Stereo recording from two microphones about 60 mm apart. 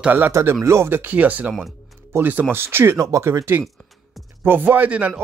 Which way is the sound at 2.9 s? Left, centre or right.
Right.